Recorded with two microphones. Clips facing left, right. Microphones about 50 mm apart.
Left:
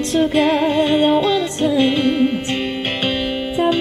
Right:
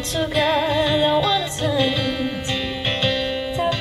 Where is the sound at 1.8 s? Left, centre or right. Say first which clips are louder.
Left 7 dB; left.